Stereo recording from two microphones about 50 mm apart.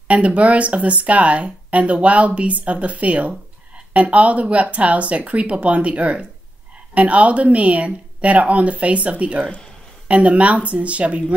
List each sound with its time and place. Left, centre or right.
0.1 s speech: right